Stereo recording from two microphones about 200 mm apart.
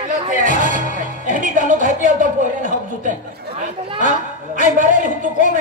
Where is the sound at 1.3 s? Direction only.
40° right (ahead or behind).